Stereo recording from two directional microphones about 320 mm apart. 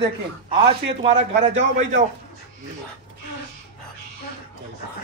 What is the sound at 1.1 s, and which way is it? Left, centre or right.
Speech, right.